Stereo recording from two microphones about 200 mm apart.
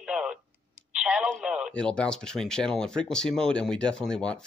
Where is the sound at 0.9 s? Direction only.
5° right (ahead or behind).